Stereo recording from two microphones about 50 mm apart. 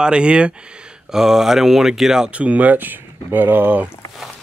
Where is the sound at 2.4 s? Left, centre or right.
Right.